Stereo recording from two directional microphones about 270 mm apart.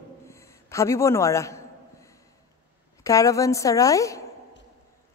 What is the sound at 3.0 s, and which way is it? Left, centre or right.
A woman's voice, centre.